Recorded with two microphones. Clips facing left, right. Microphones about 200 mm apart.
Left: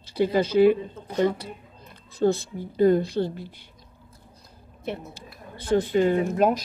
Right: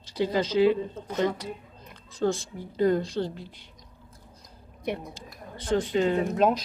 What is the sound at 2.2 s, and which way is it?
A woman's voice, 20° left (ahead or behind).